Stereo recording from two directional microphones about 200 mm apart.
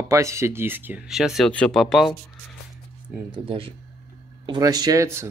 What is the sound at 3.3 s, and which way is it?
Speech, 25° right (ahead or behind).